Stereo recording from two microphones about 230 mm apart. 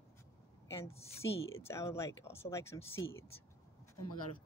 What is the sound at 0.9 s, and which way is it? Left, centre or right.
Speech, left.